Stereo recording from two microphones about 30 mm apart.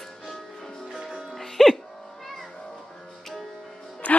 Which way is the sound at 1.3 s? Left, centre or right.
Centre.